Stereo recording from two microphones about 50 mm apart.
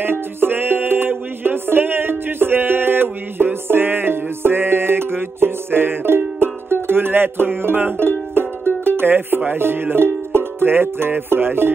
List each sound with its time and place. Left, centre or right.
0.0 s music: right
8.9 s speech: right
9.6 s music: right